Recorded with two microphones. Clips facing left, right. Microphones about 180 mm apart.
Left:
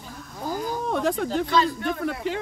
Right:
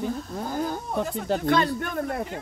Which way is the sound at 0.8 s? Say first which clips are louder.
Left 4 dB; 85° left.